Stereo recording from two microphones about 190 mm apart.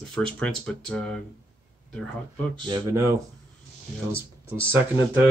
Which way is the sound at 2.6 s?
20° right (ahead or behind).